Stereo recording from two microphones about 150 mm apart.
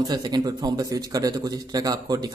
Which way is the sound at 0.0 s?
30° right (ahead or behind).